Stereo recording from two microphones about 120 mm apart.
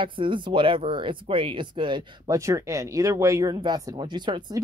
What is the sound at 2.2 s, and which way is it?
Speech, 25° right (ahead or behind).